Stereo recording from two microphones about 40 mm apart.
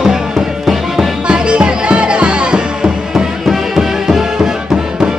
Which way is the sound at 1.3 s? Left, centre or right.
Right.